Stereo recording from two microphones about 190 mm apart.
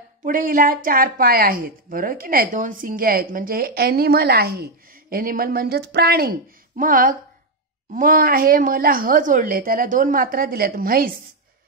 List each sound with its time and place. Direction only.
0.2 s speech: 45° right (ahead or behind)